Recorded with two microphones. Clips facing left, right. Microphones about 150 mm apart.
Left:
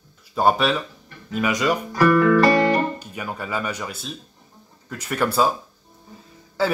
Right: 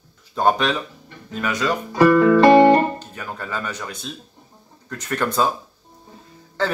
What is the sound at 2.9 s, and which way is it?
Speech, 10° left (ahead or behind).